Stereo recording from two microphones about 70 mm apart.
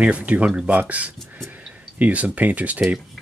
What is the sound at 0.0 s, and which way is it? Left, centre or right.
Speech, centre.